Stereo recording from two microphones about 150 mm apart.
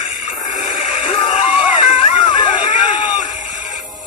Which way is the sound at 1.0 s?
40° left (ahead or behind).